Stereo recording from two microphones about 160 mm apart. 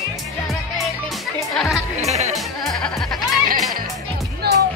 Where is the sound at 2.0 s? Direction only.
45° right (ahead or behind).